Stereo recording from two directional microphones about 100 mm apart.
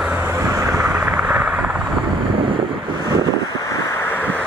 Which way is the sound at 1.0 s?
5° right (ahead or behind).